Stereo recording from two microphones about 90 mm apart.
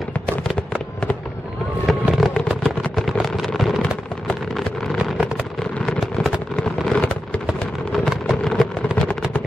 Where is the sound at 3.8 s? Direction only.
15° left (ahead or behind).